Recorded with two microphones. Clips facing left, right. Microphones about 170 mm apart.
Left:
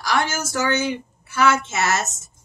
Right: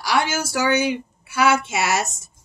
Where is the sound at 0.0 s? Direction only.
10° right (ahead or behind).